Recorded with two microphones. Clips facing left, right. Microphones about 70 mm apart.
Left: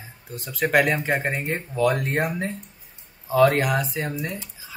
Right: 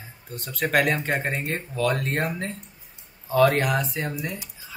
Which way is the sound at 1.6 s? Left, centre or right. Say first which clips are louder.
Left 4 dB; centre.